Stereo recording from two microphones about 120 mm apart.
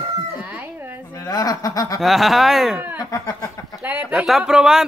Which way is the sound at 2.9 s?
30° left (ahead or behind).